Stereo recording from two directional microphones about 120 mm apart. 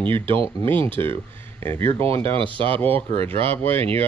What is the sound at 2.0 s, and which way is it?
Speech, 50° right (ahead or behind).